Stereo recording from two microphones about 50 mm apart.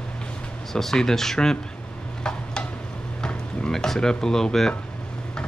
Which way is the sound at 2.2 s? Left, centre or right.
Centre.